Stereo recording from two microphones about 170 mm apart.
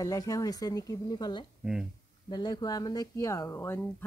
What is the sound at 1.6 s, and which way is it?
Speech, 5° right (ahead or behind).